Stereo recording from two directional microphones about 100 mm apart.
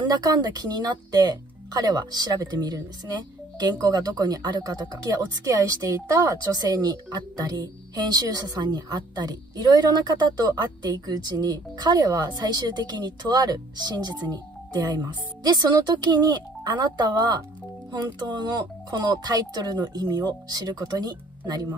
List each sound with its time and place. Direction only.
0.0 s speech: 40° right (ahead or behind)